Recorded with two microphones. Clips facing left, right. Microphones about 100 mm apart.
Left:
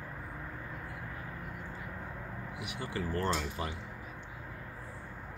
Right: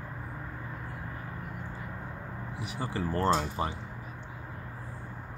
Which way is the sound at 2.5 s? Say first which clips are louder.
Right 4 dB; 30° right (ahead or behind).